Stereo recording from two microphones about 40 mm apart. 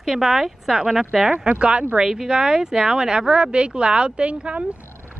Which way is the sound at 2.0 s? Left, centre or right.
Centre.